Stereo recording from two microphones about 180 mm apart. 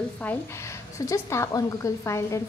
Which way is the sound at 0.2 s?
10° left (ahead or behind).